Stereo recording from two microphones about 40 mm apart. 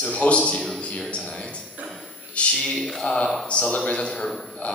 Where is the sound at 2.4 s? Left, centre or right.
Left.